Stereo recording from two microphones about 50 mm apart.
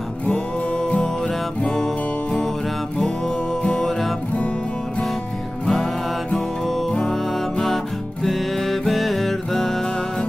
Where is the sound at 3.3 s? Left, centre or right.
Left.